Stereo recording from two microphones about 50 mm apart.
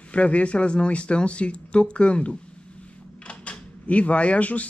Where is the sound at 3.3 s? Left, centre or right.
Left.